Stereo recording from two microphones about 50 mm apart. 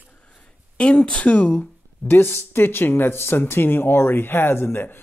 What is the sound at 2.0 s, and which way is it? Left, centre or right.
Speech, left.